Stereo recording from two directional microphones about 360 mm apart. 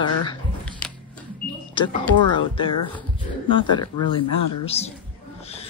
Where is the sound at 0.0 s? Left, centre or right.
Centre.